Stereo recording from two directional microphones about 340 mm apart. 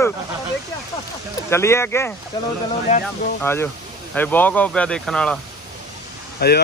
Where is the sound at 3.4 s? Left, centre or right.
Centre.